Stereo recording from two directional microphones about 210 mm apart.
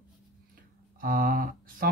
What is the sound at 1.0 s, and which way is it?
Speech, 45° right (ahead or behind).